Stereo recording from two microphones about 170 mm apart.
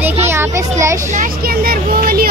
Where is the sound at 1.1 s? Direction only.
55° right (ahead or behind).